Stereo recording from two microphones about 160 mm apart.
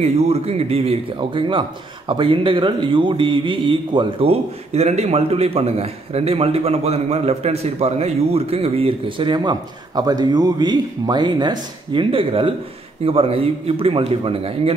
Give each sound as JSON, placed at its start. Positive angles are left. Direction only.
{"t": 0.0, "sound": "a man's voice", "side_deg": -40}